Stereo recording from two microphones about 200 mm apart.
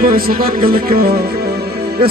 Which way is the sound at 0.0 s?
50° right (ahead or behind).